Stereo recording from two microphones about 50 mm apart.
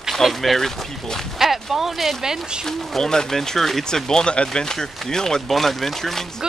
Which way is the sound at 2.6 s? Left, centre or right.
Centre.